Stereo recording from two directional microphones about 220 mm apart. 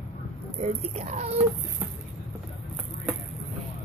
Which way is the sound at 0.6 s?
30° right (ahead or behind).